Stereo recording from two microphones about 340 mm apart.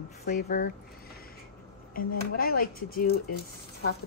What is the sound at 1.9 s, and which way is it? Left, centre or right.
Speech, left.